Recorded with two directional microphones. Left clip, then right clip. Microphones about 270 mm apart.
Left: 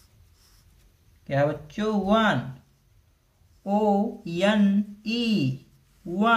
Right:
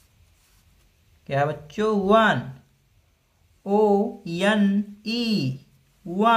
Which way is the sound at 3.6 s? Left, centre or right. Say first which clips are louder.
Right 4 dB; centre.